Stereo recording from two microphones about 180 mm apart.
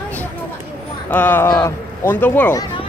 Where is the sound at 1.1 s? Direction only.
10° left (ahead or behind).